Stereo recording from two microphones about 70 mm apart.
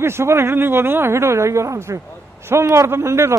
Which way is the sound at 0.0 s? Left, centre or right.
Right.